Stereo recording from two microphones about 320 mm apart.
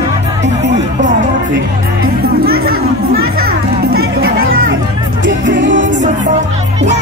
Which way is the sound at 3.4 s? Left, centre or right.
Right.